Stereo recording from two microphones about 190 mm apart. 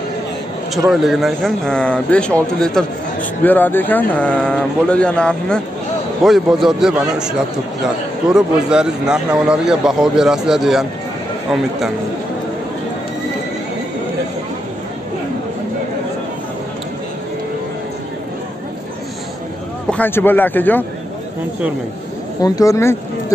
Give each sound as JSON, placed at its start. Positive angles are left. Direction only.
{"t": 0.8, "sound": "a man's voice", "side_deg": 0}
{"t": 3.4, "sound": "a man's voice", "side_deg": 10}
{"t": 19.9, "sound": "a man's voice", "side_deg": 10}
{"t": 22.4, "sound": "a man's voice", "side_deg": 15}